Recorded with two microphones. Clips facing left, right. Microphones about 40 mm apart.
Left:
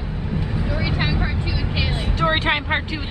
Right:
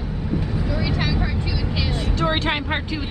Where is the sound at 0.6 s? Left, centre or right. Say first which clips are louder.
Left 3 dB; centre.